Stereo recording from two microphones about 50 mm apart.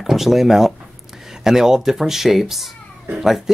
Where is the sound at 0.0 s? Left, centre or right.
Centre.